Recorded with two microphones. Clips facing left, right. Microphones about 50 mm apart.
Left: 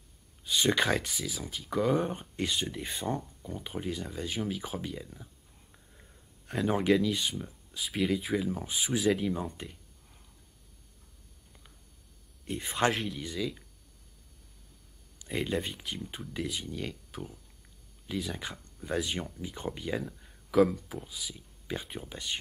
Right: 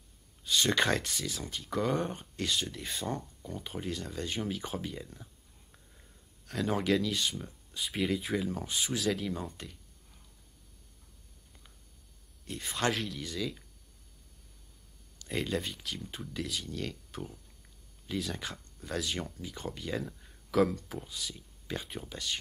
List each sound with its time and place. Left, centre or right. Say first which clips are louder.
0.5 s speech: left 1 dB; centre
2.3 s speech: even; centre
5.9 s speech: left 3 dB; centre
12.4 s speech: left 3 dB; centre
15.2 s speech: left 1 dB; centre
20.0 s speech: even; centre
22.1 s speech: even; centre